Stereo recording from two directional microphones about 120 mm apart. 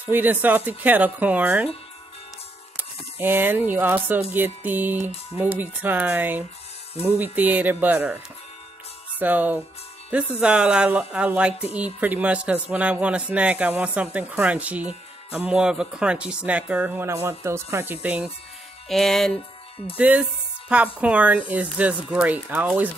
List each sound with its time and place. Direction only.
0.0 s speech: 15° right (ahead or behind)
2.8 s speech: 15° right (ahead or behind)
9.2 s speech: 15° right (ahead or behind)
18.0 s speech: 10° right (ahead or behind)
18.9 s music: centre (ahead or behind)
20.0 s speech: 10° right (ahead or behind)